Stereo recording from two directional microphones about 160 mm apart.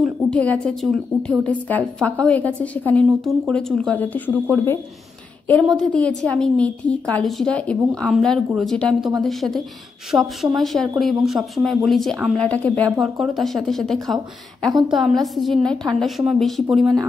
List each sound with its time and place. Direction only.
0.0 s a woman's voice: 5° left (ahead or behind)